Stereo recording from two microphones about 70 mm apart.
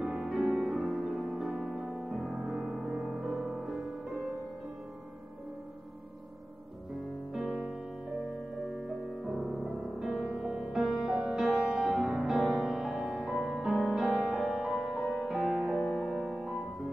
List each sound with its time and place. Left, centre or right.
0.0 s music: centre
8.3 s music: centre
11.8 s music: centre
15.7 s music: centre
16.1 s music: centre